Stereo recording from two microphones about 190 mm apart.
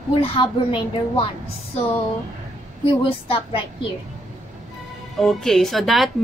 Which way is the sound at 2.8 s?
30° left (ahead or behind).